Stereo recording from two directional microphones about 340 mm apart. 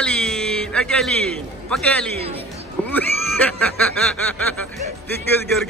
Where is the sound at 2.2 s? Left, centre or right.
Centre.